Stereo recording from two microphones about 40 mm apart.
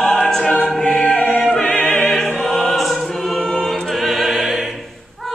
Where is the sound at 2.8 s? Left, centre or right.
Centre.